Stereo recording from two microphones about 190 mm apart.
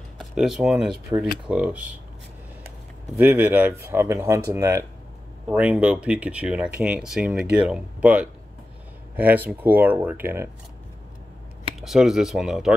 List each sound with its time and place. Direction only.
0.2 s speech: centre (ahead or behind)
3.2 s speech: 10° right (ahead or behind)
11.8 s speech: centre (ahead or behind)